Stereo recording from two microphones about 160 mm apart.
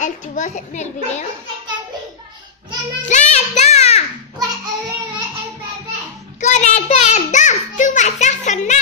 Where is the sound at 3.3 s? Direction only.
45° left (ahead or behind).